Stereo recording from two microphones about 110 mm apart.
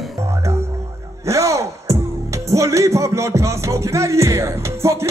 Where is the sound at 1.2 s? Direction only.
25° right (ahead or behind).